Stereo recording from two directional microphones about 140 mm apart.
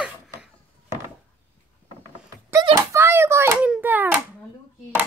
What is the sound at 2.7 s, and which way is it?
Hands, 20° right (ahead or behind).